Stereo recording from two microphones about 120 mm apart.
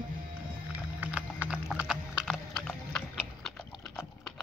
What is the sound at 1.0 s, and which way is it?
Clip-clop, 10° right (ahead or behind).